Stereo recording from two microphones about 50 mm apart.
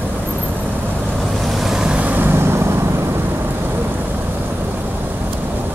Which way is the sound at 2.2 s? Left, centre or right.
Right.